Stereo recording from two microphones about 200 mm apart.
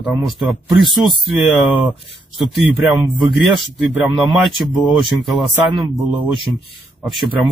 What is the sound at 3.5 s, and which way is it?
Speech, centre (ahead or behind).